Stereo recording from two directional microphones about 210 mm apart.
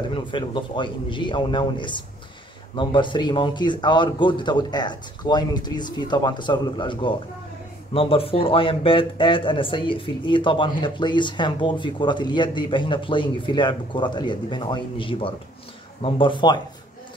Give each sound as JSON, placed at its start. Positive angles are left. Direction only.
{"t": 0.1, "sound": "speech", "side_deg": 20}